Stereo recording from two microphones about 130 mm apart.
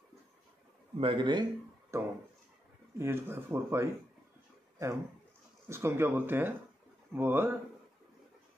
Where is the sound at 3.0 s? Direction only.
15° right (ahead or behind).